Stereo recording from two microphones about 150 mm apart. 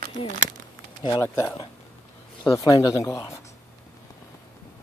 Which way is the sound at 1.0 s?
25° left (ahead or behind).